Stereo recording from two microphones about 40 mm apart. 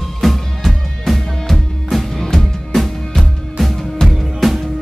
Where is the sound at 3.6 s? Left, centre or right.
Centre.